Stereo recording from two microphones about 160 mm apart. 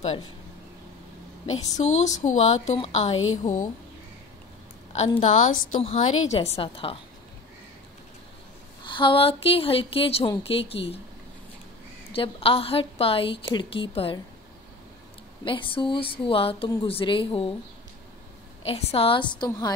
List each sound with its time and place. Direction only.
1.8 s speech: 45° left (ahead or behind)
4.9 s a woman's voice: 40° left (ahead or behind)
8.8 s a woman's voice: 30° left (ahead or behind)
12.1 s a woman's voice: 35° left (ahead or behind)
15.4 s a woman's voice: 30° left (ahead or behind)
18.7 s a woman's voice: 40° left (ahead or behind)